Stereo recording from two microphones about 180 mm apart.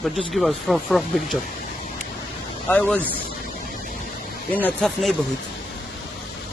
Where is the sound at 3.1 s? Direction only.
55° left (ahead or behind).